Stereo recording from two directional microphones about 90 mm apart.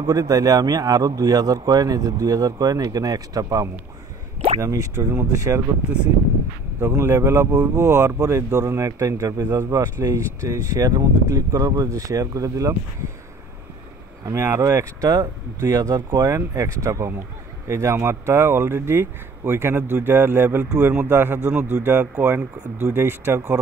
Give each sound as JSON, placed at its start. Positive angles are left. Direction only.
{"t": 0.0, "sound": "speech", "side_deg": -45}
{"t": 6.8, "sound": "speech", "side_deg": -30}
{"t": 14.2, "sound": "speech", "side_deg": -30}